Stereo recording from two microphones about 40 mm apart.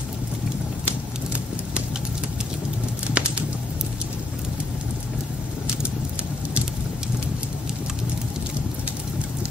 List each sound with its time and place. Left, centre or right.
3.2 s bird: right